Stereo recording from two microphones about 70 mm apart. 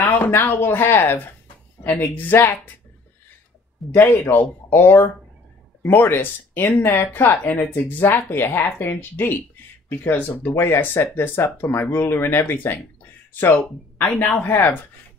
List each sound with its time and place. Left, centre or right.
0.0 s speech: left
3.9 s speech: left